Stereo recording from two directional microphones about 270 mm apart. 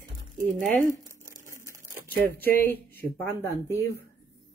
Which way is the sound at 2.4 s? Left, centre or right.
Centre.